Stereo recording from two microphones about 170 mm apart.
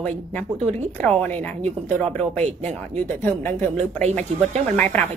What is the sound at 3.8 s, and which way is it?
Speech, 40° right (ahead or behind).